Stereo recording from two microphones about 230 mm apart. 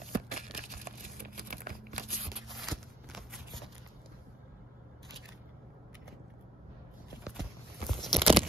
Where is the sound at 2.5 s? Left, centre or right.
Centre.